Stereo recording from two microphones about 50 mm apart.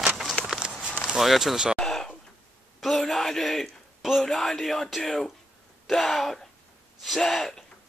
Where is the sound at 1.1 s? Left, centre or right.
Centre.